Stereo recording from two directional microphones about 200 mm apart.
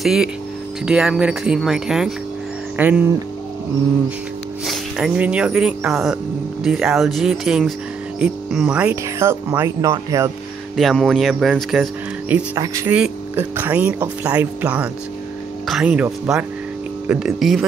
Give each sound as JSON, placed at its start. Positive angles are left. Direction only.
{"t": 0.0, "sound": "speech", "side_deg": 0}
{"t": 4.6, "sound": "speech", "side_deg": -5}
{"t": 10.8, "sound": "speech", "side_deg": 0}
{"t": 12.5, "sound": "speech", "side_deg": -15}